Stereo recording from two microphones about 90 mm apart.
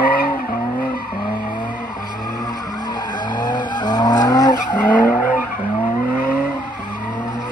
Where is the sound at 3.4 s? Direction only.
55° left (ahead or behind).